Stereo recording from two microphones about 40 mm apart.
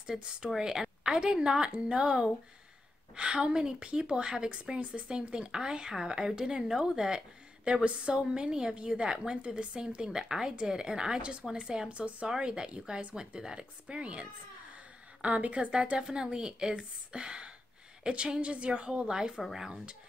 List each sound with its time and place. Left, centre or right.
0.0 s a woman's voice: centre
15.2 s a woman's voice: right; by 19.4 s centre
19.4 s speech: centre